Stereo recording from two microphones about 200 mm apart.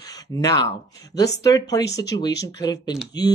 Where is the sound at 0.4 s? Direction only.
20° left (ahead or behind).